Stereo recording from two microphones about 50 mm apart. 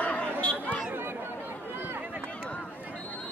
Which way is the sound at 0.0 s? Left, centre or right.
Left.